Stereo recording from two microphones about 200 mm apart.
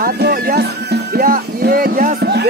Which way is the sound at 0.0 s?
50° right (ahead or behind).